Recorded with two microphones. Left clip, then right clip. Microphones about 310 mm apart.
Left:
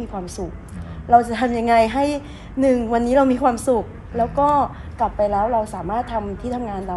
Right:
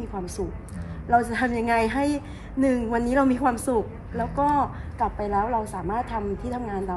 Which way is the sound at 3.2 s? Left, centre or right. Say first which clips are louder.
Left 5 dB; centre.